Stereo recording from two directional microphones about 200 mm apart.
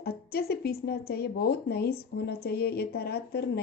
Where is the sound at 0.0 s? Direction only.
50° left (ahead or behind).